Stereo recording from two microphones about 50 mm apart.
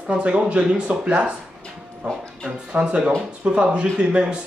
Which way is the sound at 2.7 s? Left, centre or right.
Centre.